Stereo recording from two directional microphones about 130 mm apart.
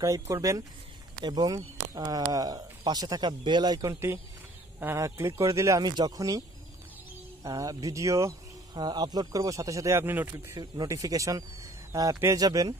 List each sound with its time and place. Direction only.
0.0 s speech: 25° right (ahead or behind)
7.4 s speech: 25° right (ahead or behind)